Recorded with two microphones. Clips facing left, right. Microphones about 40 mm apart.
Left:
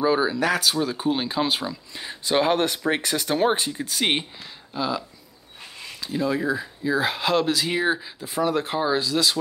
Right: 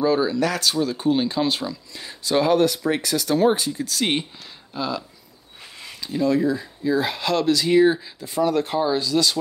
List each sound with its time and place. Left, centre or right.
0.0 s speech: centre
4.7 s speech: centre